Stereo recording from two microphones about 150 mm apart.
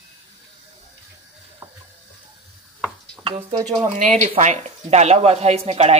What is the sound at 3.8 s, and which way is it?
Speech, 50° right (ahead or behind).